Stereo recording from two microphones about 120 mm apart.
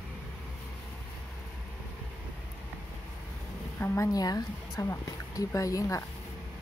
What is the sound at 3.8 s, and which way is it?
Speech, 25° left (ahead or behind).